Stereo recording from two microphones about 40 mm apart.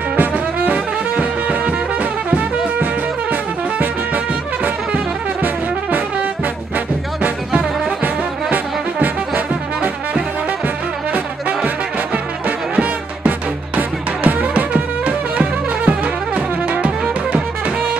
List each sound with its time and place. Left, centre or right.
0.6 s brass instrument: right
5.4 s brass instrument: right
12.4 s music: right